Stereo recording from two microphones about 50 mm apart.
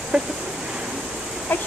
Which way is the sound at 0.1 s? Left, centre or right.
Centre.